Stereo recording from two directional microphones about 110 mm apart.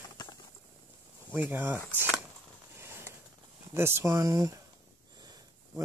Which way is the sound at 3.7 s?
25° right (ahead or behind).